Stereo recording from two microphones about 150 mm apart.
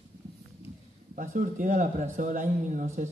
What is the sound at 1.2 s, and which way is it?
A woman's voice, 65° right (ahead or behind).